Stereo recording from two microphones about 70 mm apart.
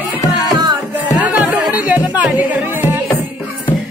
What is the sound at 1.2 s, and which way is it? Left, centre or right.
Music, right.